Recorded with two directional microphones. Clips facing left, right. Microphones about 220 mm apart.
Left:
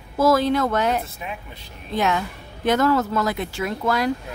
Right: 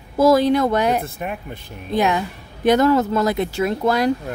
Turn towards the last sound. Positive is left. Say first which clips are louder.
# right 4 dB
turn(degrees=-35)  # may be behind; listen again after turning